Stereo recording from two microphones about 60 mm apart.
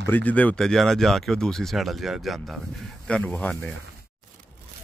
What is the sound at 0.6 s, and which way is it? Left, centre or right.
Speech, centre.